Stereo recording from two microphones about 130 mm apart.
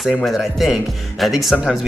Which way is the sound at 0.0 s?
Centre (ahead or behind).